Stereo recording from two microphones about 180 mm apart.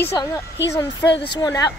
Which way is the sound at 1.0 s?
70° left (ahead or behind).